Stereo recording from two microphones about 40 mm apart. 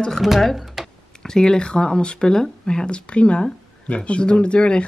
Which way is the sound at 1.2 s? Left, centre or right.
Centre.